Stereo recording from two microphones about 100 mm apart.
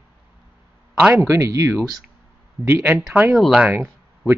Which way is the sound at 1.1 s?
20° right (ahead or behind).